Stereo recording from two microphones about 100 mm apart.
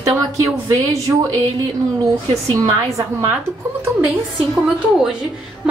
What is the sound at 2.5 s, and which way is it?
Speech, 30° right (ahead or behind).